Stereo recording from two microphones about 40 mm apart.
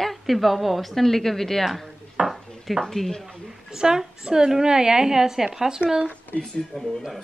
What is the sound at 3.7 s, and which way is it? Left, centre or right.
A woman's voice, centre.